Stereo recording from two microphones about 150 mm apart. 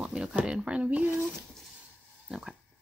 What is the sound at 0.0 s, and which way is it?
Speech, 5° right (ahead or behind).